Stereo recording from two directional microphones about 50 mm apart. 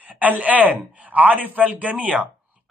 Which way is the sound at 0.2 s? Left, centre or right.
Right.